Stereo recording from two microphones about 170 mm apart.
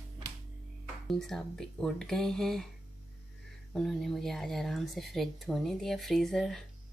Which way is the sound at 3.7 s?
Centre (ahead or behind).